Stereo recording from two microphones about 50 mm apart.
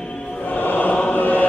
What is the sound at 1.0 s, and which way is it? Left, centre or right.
Chant, left.